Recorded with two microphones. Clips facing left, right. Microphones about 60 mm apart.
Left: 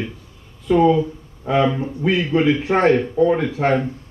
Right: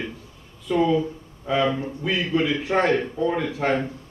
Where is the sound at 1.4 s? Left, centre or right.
Left.